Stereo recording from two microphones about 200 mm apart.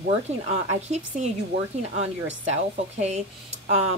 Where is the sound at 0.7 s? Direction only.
35° right (ahead or behind).